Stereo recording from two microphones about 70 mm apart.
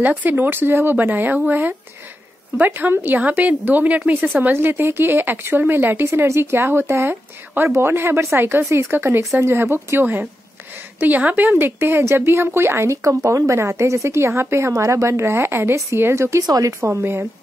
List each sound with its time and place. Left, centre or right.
0.0 s speech: right
16.4 s speech: right
16.8 s speech: right